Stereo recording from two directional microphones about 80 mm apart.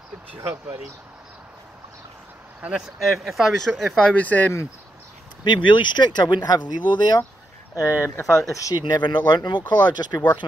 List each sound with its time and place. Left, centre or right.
3.0 s speech: centre
4.1 s speech: centre
5.4 s speech: left
7.7 s speech: left
8.7 s speech: left